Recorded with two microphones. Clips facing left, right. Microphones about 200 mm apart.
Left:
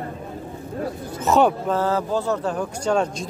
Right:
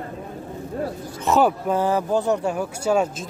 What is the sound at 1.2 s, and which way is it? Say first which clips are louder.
Speech: left 1 dB; centre (ahead or behind).